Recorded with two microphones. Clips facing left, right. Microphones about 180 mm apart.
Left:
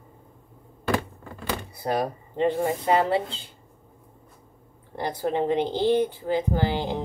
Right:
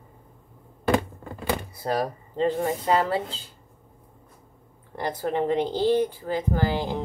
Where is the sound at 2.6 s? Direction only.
20° left (ahead or behind).